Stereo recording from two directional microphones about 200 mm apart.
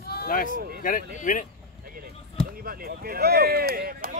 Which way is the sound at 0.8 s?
40° left (ahead or behind).